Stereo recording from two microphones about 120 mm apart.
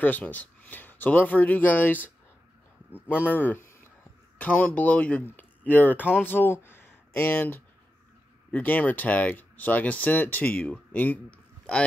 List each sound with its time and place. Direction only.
0.0 s speech: 15° left (ahead or behind)